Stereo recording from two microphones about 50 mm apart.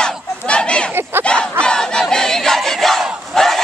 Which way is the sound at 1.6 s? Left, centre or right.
Centre.